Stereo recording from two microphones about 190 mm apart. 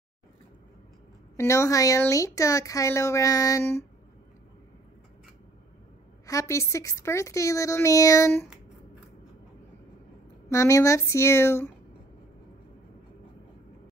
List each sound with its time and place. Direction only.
1.3 s a woman's voice: 15° left (ahead or behind)
6.2 s a woman's voice: 15° left (ahead or behind)
10.5 s a woman's voice: 15° left (ahead or behind)